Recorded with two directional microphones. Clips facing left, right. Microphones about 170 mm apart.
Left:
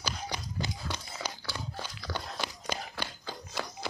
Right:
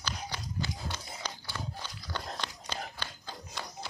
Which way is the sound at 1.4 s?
90° left.